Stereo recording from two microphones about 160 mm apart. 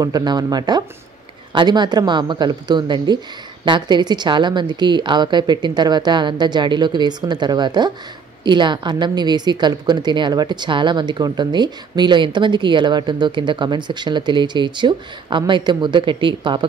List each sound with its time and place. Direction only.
0.0 s a woman's voice: 25° right (ahead or behind)